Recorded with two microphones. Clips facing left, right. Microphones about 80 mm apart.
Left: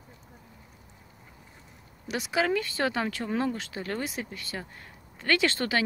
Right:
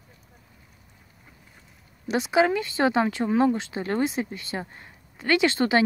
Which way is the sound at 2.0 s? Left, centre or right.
Right.